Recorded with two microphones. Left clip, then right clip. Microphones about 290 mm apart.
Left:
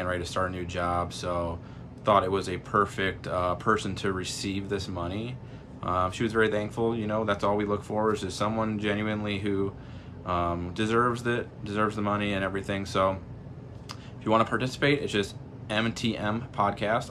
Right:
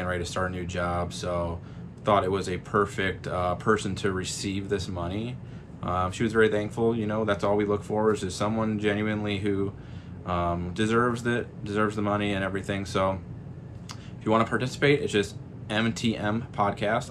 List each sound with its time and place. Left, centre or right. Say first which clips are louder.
0.0 s speech: even; centre
14.2 s speech: even; centre